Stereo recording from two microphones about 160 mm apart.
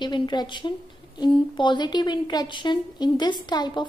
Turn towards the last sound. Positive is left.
turn(degrees=30)  # may be behind; listen again after turning